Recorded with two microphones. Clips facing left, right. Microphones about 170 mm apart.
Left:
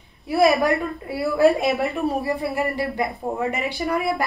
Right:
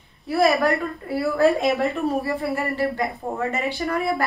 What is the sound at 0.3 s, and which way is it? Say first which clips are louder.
Speech: left 1 dB; 15° left (ahead or behind).